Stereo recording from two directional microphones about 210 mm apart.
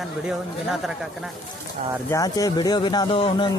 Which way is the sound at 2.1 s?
15° left (ahead or behind).